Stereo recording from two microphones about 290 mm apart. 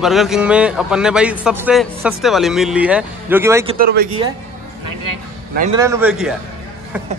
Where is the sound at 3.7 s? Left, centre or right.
Right.